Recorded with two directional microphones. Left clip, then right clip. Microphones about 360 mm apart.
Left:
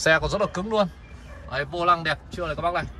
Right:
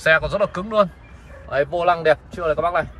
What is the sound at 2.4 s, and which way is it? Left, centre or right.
Speech, centre.